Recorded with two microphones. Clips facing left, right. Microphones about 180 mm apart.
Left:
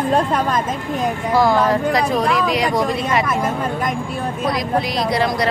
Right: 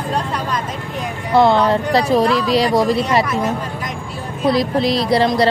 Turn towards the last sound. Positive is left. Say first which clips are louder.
# right 4 dB
turn(degrees=-30)  # may be behind; listen again after turning